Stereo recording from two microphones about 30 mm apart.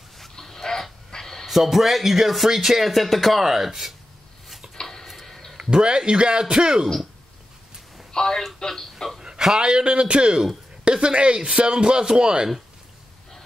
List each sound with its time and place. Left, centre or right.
0.4 s a sound: centre
1.4 s speech: centre
2.8 s speech: centre
3.4 s speech: centre
5.0 s a sound: centre
5.6 s a man's voice: right
8.1 s telephone: centre
8.5 s speech: centre
8.9 s a sound: centre
9.6 s speech: right